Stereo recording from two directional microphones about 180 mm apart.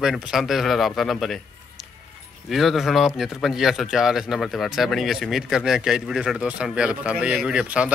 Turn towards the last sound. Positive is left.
turn(degrees=-5)  # may be behind; listen again after turning